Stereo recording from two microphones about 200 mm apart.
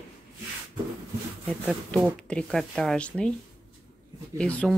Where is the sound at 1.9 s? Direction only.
5° left (ahead or behind).